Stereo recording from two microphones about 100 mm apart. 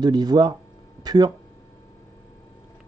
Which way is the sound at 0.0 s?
45° right (ahead or behind).